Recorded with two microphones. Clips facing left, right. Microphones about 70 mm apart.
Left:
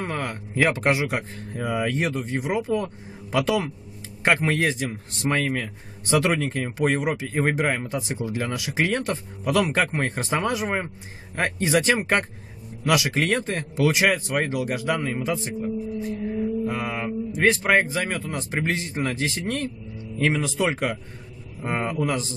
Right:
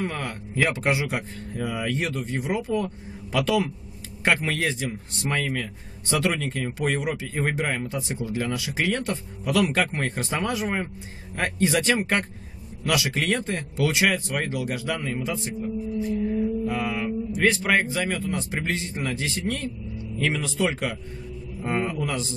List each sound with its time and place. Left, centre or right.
0.0 s speech: left
16.6 s mantra: left
17.6 s speech: left